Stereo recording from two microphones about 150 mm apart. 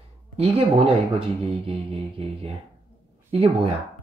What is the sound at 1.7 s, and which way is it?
Speech, 40° right (ahead or behind).